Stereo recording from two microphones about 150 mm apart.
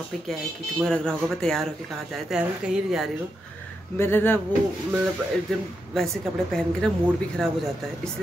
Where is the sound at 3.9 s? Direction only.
15° left (ahead or behind).